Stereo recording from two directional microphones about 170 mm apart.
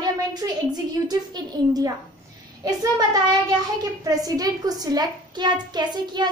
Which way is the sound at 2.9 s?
25° right (ahead or behind).